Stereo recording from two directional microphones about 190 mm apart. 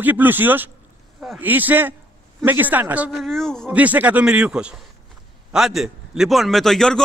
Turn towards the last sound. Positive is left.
turn(degrees=5)  # may be behind; listen again after turning